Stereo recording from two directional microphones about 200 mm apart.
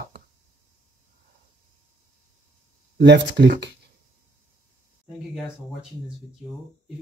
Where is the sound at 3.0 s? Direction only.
60° right (ahead or behind).